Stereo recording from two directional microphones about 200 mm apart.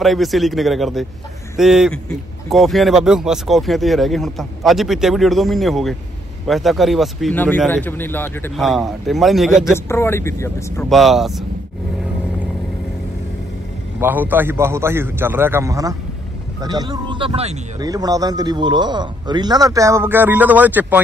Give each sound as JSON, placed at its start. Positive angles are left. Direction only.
{"t": 0.0, "sound": "a man's voice", "side_deg": 0}
{"t": 8.5, "sound": "a man's voice", "side_deg": 0}
{"t": 9.8, "sound": "speech", "side_deg": 10}
{"t": 10.9, "sound": "a man's voice", "side_deg": 0}
{"t": 13.9, "sound": "a man's voice", "side_deg": -10}